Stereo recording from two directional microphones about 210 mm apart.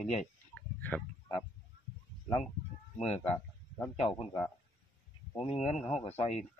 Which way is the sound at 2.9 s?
30° left (ahead or behind).